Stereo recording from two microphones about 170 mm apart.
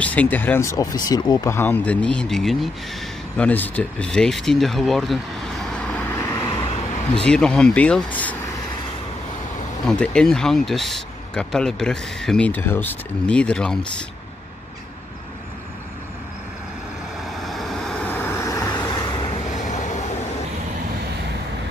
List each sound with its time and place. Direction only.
0.0 s speech: 10° left (ahead or behind)
7.2 s speech: 5° left (ahead or behind)
9.8 s speech: 5° left (ahead or behind)
17.2 s vehicle: centre (ahead or behind); by 19.2 s 25° left (ahead or behind)
19.6 s train: 45° left (ahead or behind)